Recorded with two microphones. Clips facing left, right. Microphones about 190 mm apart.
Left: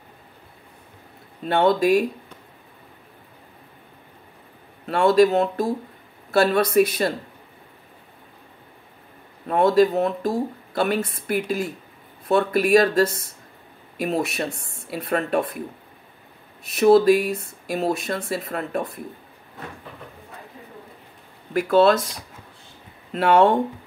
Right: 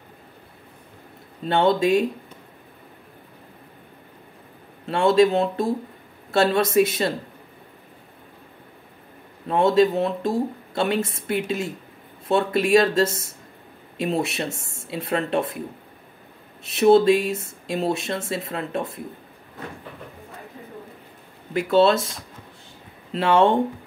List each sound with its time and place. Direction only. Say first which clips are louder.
1.6 s speech: left 1 dB; 25° right (ahead or behind)
4.8 s speech: left 1 dB; 25° right (ahead or behind)
9.5 s speech: left 1 dB; 25° right (ahead or behind)
16.6 s speech: left 1 dB; 25° right (ahead or behind)
21.5 s speech: left 1 dB; 25° right (ahead or behind)